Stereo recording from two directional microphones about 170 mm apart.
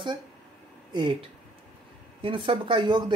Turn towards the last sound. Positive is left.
turn(degrees=-25)  # may be behind; listen again after turning